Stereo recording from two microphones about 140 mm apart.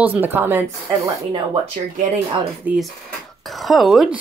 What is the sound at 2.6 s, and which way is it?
Speech, 5° right (ahead or behind).